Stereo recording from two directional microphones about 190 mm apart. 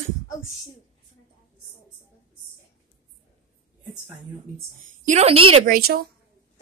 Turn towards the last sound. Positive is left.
turn(degrees=-50)  # may be behind; listen again after turning